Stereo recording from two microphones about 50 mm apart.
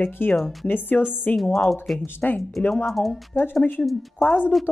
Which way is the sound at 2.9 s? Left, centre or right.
Centre.